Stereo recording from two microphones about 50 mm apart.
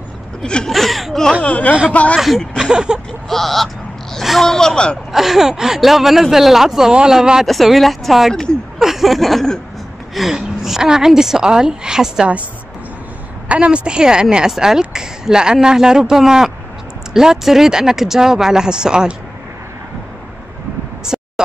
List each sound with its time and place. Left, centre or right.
0.4 s speech: centre
0.7 s whimper: centre
1.4 s speech: left
2.1 s speech: centre
2.7 s a woman's voice: centre
3.3 s a sound: centre
4.5 s speech: centre
5.1 s a woman's voice: centre
7.4 s speech: centre
8.7 s a sound: centre
10.1 s a woman's voice: centre
13.5 s a woman's voice: right
21.1 s a sound: centre